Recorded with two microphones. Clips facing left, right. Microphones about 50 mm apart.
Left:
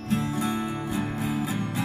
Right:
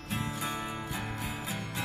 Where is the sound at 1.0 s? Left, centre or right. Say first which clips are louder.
Left 8 dB; left.